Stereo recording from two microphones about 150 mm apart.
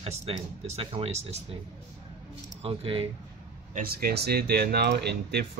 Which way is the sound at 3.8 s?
85° right.